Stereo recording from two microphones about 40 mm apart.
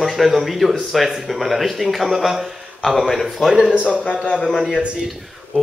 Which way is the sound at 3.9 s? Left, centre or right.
Left.